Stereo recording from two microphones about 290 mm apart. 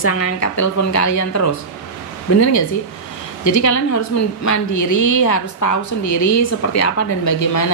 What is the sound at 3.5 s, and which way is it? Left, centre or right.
A woman's voice, left.